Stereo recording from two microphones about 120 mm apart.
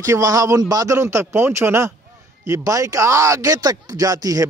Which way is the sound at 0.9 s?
20° right (ahead or behind).